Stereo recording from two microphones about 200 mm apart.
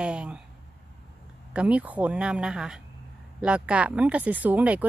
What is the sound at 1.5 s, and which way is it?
Speech, 5° right (ahead or behind).